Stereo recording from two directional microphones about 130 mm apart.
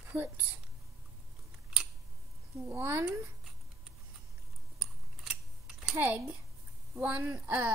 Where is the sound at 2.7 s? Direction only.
15° right (ahead or behind).